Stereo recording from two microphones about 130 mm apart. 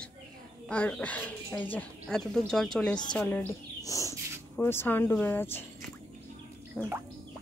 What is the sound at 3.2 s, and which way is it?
Speech, 15° left (ahead or behind).